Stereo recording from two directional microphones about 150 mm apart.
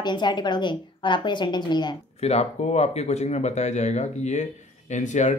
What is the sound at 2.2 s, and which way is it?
Speech, 45° left (ahead or behind).